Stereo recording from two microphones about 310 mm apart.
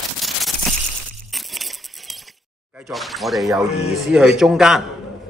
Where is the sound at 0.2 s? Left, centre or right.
Centre.